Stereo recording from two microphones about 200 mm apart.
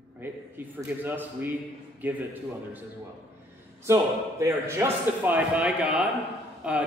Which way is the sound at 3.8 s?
15° right (ahead or behind).